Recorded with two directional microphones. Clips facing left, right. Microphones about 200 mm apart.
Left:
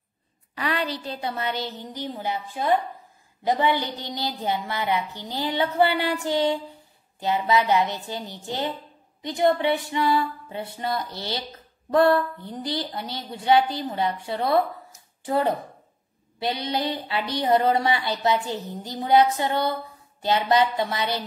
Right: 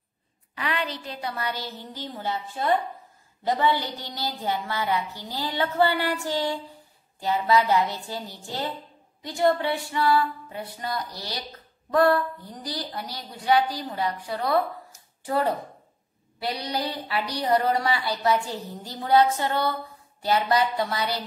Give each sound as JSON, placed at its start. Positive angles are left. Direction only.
{"t": 0.6, "sound": "a woman's voice", "side_deg": 35}